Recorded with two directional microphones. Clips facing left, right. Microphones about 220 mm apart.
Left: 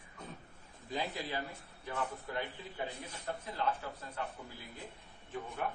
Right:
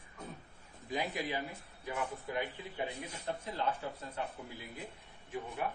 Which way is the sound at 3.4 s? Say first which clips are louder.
Left 1 dB; 25° right (ahead or behind).